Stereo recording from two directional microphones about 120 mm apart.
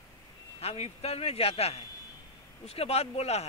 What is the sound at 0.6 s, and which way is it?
Speech, 60° left (ahead or behind).